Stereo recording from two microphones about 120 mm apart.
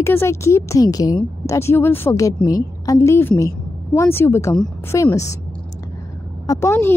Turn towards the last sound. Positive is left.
turn(degrees=20)  # may be behind; listen again after turning